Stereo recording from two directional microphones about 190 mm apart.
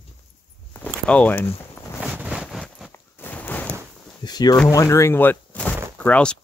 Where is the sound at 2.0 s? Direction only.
5° right (ahead or behind).